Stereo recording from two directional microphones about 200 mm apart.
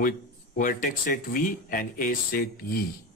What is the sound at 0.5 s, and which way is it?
Speech, 45° left (ahead or behind).